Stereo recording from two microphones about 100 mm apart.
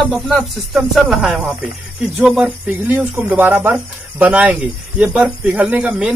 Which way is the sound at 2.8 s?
20° right (ahead or behind).